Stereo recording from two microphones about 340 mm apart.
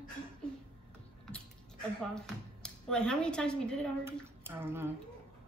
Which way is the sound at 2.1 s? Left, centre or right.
Centre.